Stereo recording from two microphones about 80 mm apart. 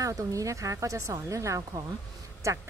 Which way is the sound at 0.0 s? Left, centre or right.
Right.